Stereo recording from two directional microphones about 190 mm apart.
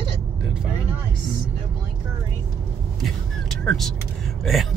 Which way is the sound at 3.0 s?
Centre (ahead or behind).